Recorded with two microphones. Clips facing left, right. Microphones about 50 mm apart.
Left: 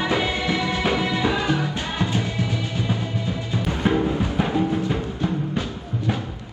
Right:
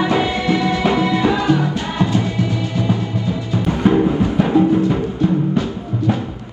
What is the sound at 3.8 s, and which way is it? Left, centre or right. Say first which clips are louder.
Music: right 7 dB; right.